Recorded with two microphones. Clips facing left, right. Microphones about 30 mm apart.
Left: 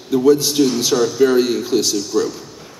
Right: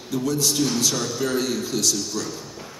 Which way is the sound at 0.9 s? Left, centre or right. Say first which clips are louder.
Left 11 dB; centre.